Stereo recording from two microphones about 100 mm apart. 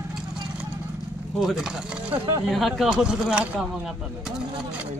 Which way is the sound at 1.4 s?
Centre (ahead or behind).